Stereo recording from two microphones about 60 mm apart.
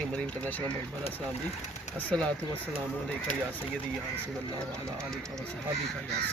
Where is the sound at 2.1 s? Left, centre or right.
Centre.